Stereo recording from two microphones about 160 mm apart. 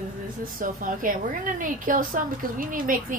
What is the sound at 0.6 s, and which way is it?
A woman's voice, 60° right (ahead or behind).